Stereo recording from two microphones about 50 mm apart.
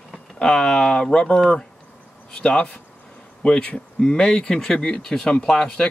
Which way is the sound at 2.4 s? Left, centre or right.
Left.